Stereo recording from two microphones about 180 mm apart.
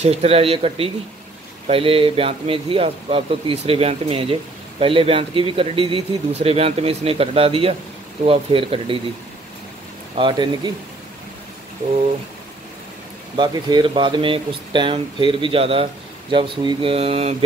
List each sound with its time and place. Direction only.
0.0 s speech: 35° right (ahead or behind)
10.1 s speech: 25° right (ahead or behind)
13.4 s speech: 25° right (ahead or behind)